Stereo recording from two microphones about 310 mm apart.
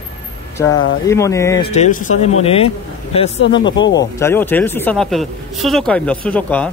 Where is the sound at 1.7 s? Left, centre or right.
Left.